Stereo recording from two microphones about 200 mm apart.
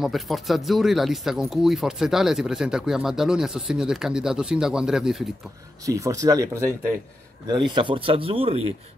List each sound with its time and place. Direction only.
0.0 s speech: centre (ahead or behind)
5.9 s speech: 15° right (ahead or behind)